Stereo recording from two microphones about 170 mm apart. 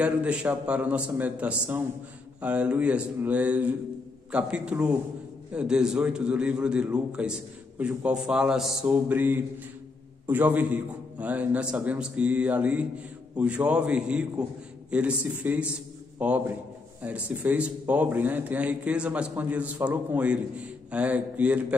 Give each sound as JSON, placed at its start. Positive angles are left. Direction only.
{"t": 0.0, "sound": "a man's voice", "side_deg": -5}